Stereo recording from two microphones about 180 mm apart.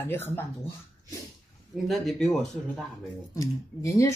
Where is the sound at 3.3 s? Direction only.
20° left (ahead or behind).